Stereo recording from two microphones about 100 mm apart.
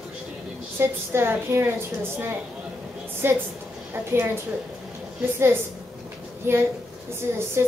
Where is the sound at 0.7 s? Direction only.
25° right (ahead or behind).